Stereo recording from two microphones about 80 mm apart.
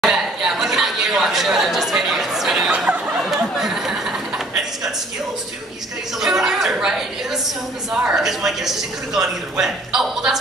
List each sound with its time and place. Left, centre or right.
0.0 s chatter: centre
2.7 s a sound: centre
3.3 s chatter: centre
6.1 s speech: centre